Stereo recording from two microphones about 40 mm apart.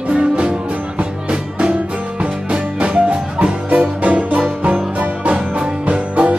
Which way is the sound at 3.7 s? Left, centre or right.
Right.